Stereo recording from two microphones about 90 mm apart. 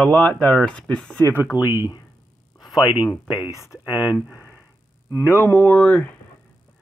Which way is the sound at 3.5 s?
35° left (ahead or behind).